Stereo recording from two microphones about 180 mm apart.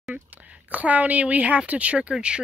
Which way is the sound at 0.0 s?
10° right (ahead or behind).